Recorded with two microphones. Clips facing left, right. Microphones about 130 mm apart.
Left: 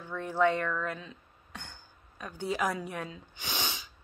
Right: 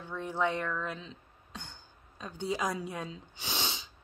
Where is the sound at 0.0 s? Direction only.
20° right (ahead or behind).